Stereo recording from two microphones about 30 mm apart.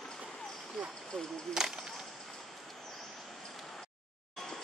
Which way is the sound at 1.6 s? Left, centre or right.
Centre.